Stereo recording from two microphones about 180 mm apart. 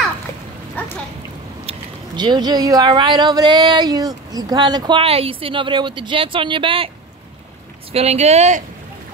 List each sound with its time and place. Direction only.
1.7 s speech: 25° right (ahead or behind)
7.9 s speech: 35° right (ahead or behind)